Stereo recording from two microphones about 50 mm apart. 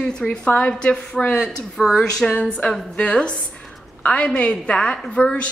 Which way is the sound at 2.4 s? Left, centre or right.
Left.